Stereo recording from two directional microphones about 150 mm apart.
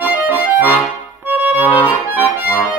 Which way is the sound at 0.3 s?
15° left (ahead or behind).